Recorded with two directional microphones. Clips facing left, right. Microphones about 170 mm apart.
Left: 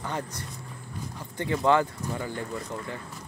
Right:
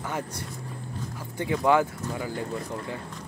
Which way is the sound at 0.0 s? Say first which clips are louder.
Right 1 dB; 10° right (ahead or behind).